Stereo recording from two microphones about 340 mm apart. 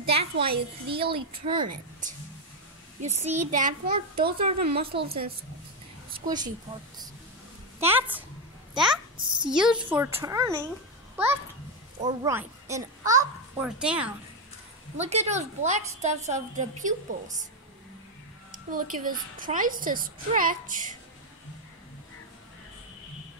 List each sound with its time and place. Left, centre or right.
0.0 s a child's voice: centre
3.0 s a woman's voice: centre
7.8 s a woman's voice: centre
9.1 s a woman's voice: centre
9.6 s a child's voice: centre
12.0 s a child's voice: centre
15.0 s a woman's voice: centre
18.7 s a woman's voice: right